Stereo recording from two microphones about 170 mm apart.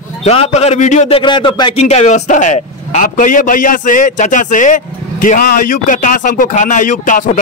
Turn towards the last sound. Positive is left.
turn(degrees=50)  # may be behind; listen again after turning